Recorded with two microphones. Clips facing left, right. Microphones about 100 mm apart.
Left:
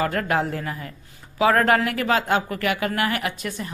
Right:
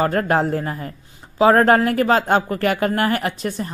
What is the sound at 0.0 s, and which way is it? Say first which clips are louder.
Speech: right 4 dB; 35° right (ahead or behind).